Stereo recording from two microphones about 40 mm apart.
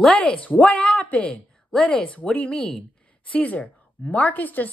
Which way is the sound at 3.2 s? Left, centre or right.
Left.